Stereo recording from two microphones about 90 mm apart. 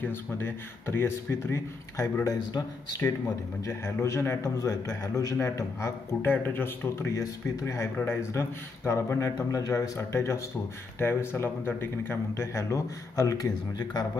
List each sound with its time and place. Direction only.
0.0 s a man's voice: 25° left (ahead or behind); by 14.0 s 45° left (ahead or behind)